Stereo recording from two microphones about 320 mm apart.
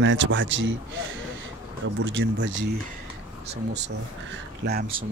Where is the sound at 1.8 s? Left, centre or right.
Right.